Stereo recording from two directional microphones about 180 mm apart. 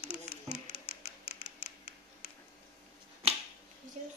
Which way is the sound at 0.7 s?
35° left (ahead or behind).